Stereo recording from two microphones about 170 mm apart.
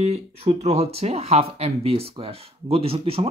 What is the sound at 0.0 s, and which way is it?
Speech, 40° right (ahead or behind).